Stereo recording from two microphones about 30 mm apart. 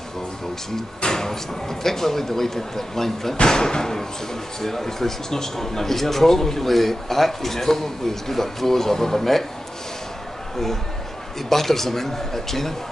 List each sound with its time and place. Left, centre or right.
1.0 s a man's voice: centre
11.4 s a man's voice: centre